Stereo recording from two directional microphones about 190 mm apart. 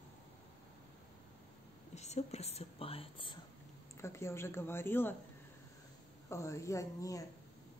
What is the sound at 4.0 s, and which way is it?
Speech, 15° left (ahead or behind).